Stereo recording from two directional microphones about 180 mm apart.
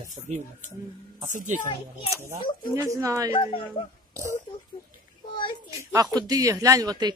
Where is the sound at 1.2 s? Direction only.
45° right (ahead or behind).